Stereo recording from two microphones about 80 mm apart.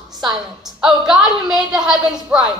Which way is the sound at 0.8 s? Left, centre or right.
Centre.